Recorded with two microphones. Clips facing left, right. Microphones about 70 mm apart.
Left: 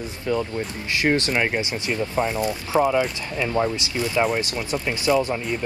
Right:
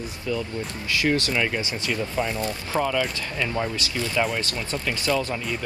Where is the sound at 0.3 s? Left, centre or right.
Left.